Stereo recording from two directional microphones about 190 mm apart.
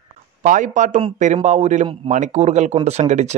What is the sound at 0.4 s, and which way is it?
Speech, 40° right (ahead or behind).